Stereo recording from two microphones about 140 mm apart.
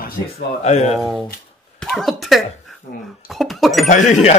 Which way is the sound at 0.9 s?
Centre (ahead or behind).